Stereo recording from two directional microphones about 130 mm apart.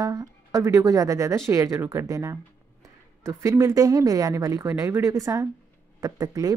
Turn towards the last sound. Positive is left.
turn(degrees=-25)  # may be behind; listen again after turning